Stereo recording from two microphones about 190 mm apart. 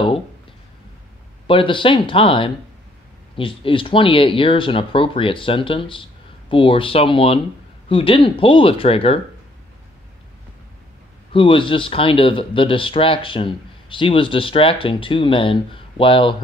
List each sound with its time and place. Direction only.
1.5 s speech: 25° left (ahead or behind)
11.3 s speech: 25° left (ahead or behind)